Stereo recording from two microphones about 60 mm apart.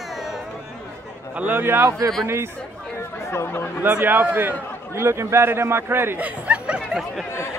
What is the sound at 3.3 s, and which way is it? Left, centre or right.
Speech, left.